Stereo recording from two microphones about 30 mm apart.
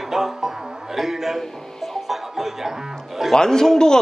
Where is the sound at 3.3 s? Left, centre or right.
Centre.